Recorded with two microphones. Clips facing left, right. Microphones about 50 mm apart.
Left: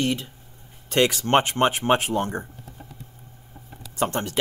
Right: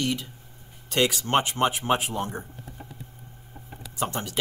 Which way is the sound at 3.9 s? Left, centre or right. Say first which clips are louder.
Left 4 dB; left.